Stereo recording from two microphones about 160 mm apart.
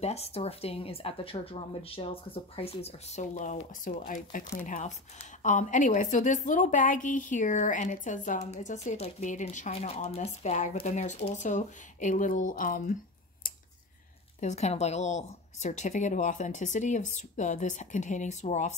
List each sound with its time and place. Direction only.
0.0 s a woman's voice: 40° left (ahead or behind); by 12.9 s 55° left (ahead or behind)
14.4 s speech: 45° left (ahead or behind)